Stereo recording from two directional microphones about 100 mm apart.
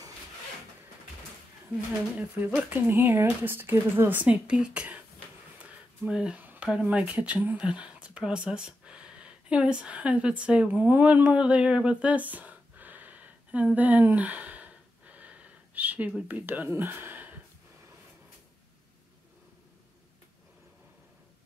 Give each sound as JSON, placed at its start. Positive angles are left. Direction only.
{"t": 2.1, "sound": "speech", "side_deg": -15}
{"t": 5.6, "sound": "a sound", "side_deg": -10}
{"t": 6.4, "sound": "speech", "side_deg": -15}
{"t": 13.7, "sound": "gasp", "side_deg": -15}
{"t": 16.2, "sound": "speech", "side_deg": -15}